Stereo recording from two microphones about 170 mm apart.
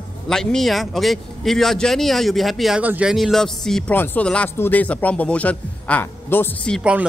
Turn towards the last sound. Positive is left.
turn(degrees=-5)  # may be behind; listen again after turning